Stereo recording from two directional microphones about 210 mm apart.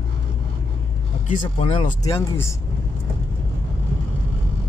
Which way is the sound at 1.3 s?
25° left (ahead or behind).